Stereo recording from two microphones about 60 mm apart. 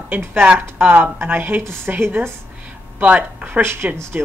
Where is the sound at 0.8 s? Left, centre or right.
Right.